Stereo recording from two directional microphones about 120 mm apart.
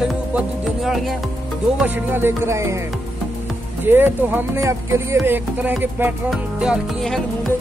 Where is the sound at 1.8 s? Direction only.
15° right (ahead or behind).